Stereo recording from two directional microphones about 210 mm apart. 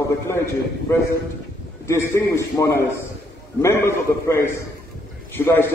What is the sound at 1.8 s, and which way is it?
A man's voice, 15° left (ahead or behind).